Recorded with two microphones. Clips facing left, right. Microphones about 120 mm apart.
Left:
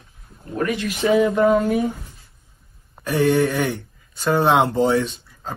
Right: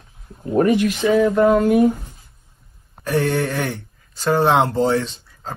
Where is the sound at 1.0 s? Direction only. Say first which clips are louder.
Left 1 dB; 15° left (ahead or behind).